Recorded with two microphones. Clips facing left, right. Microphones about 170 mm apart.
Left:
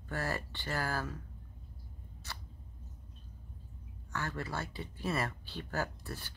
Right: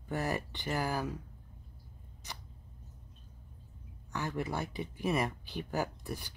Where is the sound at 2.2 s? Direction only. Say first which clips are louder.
Right 1 dB; 15° right (ahead or behind).